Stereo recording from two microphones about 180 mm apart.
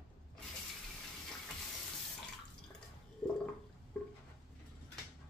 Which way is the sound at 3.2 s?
5° left (ahead or behind).